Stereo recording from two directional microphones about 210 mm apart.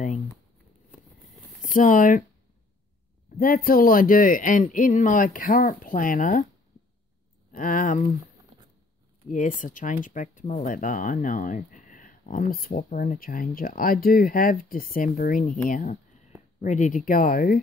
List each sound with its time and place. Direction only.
1.7 s speech: 40° left (ahead or behind)
3.3 s speech: 40° left (ahead or behind)
7.5 s speech: 40° left (ahead or behind)
9.3 s speech: 40° left (ahead or behind)